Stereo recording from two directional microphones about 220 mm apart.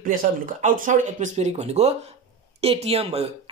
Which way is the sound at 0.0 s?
35° right (ahead or behind).